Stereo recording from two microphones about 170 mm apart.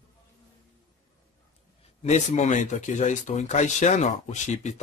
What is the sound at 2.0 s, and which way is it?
Speech, 45° left (ahead or behind).